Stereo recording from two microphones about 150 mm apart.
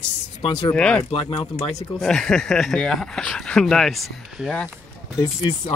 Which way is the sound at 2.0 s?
5° left (ahead or behind).